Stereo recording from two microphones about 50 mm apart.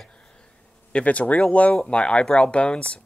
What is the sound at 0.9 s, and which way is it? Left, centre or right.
Speech, left.